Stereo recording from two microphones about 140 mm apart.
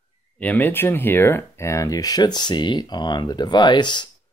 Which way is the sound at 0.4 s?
10° left (ahead or behind).